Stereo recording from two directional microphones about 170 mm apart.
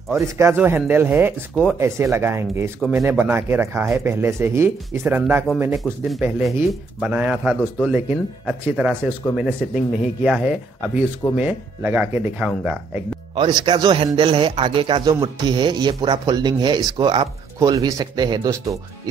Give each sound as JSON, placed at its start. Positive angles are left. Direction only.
{"t": 0.1, "sound": "speech", "side_deg": -15}
{"t": 13.3, "sound": "speech", "side_deg": -30}